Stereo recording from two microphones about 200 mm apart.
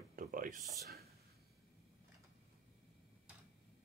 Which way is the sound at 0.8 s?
50° right (ahead or behind).